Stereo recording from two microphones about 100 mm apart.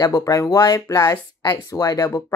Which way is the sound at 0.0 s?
35° left (ahead or behind).